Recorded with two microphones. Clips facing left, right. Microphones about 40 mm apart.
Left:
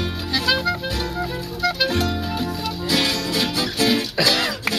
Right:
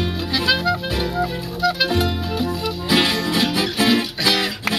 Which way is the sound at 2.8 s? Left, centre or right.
Right.